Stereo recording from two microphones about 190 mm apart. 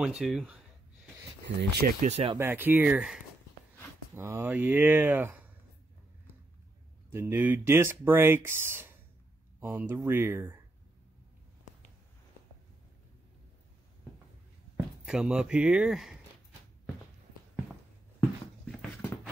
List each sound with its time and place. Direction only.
0.0 s speech: 5° right (ahead or behind)
1.6 s speech: 55° right (ahead or behind)
2.0 s speech: 35° right (ahead or behind)
2.3 s speech: 10° right (ahead or behind)
7.1 s speech: 10° right (ahead or behind)
15.0 s speech: 5° right (ahead or behind)
18.7 s dog: 5° left (ahead or behind)